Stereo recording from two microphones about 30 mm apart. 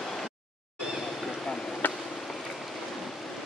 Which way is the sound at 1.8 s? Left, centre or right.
Left.